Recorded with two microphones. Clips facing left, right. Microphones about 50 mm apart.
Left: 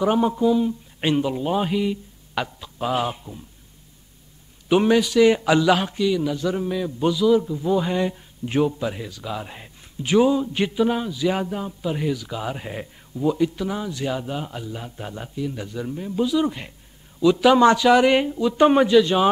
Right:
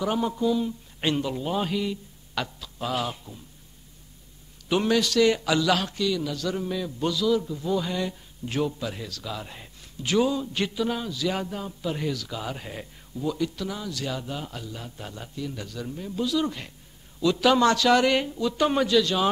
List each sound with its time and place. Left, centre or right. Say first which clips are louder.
0.0 s speech: left 6 dB; left
4.6 s a man's voice: left 5 dB; centre